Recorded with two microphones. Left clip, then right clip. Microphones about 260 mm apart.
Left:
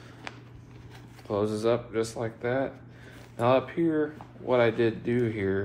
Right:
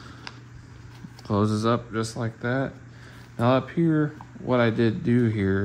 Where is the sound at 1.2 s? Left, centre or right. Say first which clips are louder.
Right 2 dB; right.